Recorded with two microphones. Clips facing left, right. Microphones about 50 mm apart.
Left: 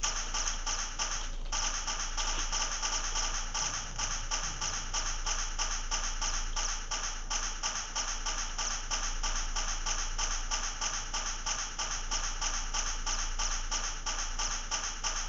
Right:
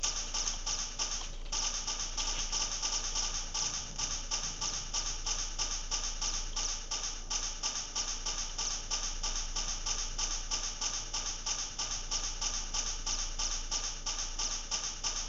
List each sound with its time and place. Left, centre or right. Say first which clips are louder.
0.0 s music: left 4 dB; left